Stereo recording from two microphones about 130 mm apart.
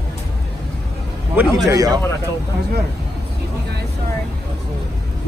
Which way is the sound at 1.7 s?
30° right (ahead or behind).